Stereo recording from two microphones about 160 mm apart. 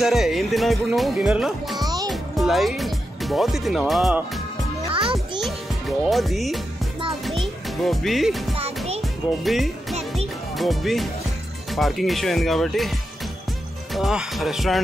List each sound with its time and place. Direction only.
0.0 s speech: centre (ahead or behind)
4.8 s music: 35° right (ahead or behind)
5.4 s music: centre (ahead or behind)
10.5 s speech: centre (ahead or behind)
13.9 s speech: centre (ahead or behind)